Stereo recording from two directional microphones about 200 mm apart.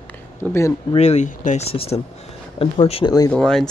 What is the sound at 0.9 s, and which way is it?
Speech, 35° left (ahead or behind).